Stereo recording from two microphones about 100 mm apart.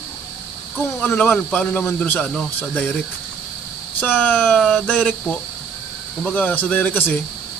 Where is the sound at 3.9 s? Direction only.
15° left (ahead or behind).